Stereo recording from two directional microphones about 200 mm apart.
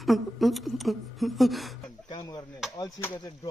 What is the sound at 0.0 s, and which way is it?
Speech, centre (ahead or behind).